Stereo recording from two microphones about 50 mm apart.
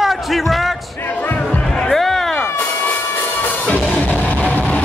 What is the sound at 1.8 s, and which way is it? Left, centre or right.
Music, centre.